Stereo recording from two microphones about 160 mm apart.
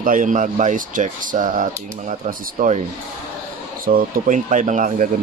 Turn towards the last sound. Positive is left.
turn(degrees=-50)  # may be behind; listen again after turning